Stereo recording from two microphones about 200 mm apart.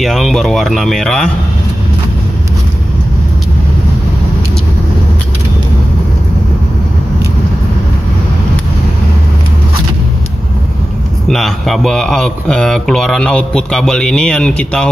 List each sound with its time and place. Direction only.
0.0 s speech: centre (ahead or behind)
11.2 s speech: centre (ahead or behind)